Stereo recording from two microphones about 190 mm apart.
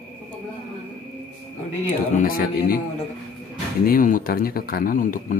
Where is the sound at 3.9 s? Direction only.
45° left (ahead or behind).